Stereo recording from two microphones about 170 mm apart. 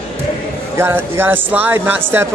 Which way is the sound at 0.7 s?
15° right (ahead or behind).